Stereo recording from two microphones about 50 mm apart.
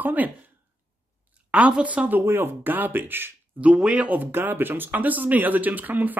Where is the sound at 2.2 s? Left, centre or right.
Right.